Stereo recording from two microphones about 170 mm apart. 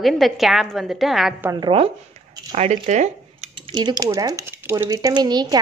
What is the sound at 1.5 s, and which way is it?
Speech, 30° right (ahead or behind).